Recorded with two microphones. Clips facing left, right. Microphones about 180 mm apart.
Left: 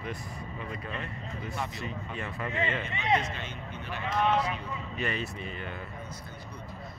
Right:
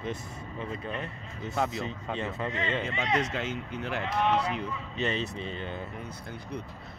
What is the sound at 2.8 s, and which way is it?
Speech, 90° right.